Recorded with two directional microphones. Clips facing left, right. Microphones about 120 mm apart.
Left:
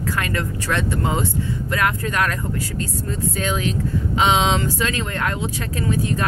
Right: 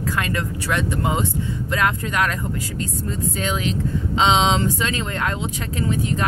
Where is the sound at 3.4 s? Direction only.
20° right (ahead or behind).